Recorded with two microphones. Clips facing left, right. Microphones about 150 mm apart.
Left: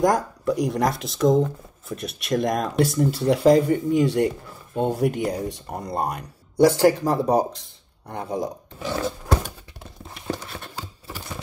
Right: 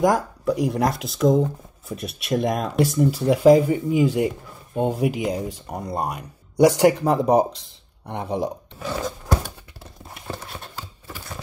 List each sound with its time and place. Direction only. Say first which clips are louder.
0.0 s speech: right 1 dB; centre (ahead or behind)
7.0 s speech: right 2 dB; 30° right (ahead or behind)
8.8 s a sound: left 1 dB; 30° left (ahead or behind)